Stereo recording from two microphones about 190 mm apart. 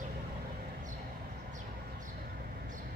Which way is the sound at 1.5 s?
50° right (ahead or behind).